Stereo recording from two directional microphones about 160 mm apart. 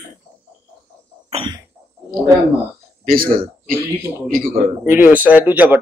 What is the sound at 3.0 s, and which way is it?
Speech, 60° right (ahead or behind).